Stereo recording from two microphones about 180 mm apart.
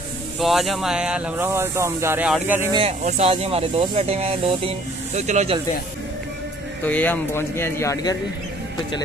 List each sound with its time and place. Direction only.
0.4 s speech: centre (ahead or behind)
2.7 s speech: 35° right (ahead or behind)
6.8 s speech: 10° left (ahead or behind)